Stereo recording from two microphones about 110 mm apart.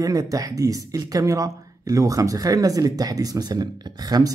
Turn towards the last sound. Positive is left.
turn(degrees=-35)  # may be behind; listen again after turning